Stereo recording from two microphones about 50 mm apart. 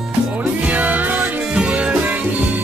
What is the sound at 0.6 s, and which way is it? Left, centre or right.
Music, right.